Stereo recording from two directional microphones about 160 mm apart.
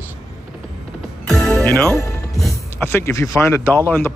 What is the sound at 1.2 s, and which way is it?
Music, 5° left (ahead or behind).